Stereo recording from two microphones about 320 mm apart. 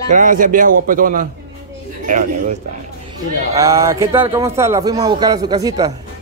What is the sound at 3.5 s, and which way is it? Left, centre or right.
Speech, centre.